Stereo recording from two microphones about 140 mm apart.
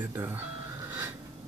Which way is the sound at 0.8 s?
15° right (ahead or behind).